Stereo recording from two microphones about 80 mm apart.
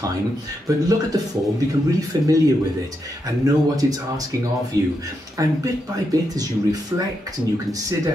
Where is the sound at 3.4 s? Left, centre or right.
Right.